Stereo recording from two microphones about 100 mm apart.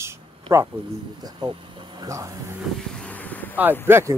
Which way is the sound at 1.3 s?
50° right (ahead or behind).